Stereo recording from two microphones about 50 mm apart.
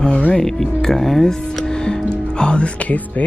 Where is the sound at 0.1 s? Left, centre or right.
Left.